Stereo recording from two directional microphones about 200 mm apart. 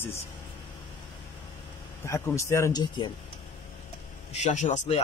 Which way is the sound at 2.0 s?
15° left (ahead or behind).